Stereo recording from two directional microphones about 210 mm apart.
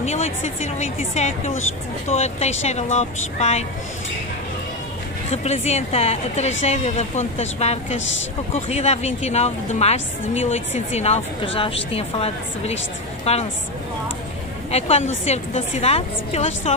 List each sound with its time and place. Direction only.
0.0 s a woman's voice: 30° left (ahead or behind)
5.3 s a woman's voice: 30° left (ahead or behind)
14.7 s a woman's voice: 30° left (ahead or behind)